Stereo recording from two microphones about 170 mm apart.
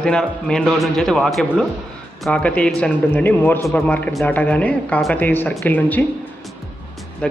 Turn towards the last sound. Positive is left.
turn(degrees=5)  # may be behind; listen again after turning